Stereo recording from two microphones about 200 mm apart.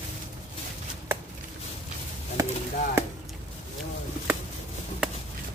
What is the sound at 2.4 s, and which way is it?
Chop, 15° right (ahead or behind).